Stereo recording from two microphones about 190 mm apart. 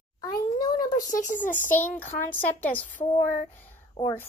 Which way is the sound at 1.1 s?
45° left (ahead or behind).